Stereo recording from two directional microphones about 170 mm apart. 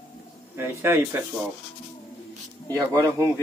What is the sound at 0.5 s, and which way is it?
Speech, 15° right (ahead or behind).